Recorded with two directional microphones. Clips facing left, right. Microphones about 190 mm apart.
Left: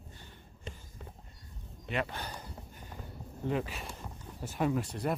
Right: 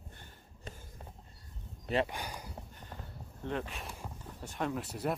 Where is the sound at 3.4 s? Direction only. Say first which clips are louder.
Left 4 dB; 5° left (ahead or behind).